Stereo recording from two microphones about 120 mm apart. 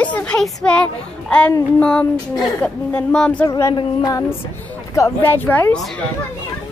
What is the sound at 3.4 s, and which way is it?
Speech, 25° left (ahead or behind).